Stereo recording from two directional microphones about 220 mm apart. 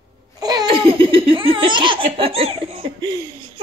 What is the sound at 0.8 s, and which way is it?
Laughter, 25° right (ahead or behind).